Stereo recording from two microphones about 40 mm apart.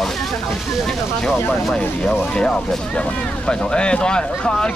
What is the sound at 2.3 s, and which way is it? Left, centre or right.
Speech, left.